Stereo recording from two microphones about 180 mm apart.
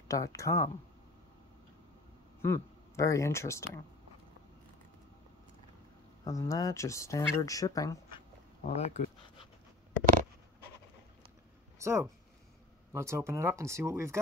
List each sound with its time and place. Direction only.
0.1 s speech: 15° left (ahead or behind)
2.4 s speech: 15° left (ahead or behind)
6.2 s speech: 15° left (ahead or behind)
8.6 s speech: 35° left (ahead or behind)
11.8 s speech: 15° right (ahead or behind)